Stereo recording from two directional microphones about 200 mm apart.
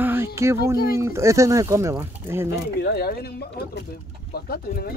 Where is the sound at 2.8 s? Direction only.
50° left (ahead or behind).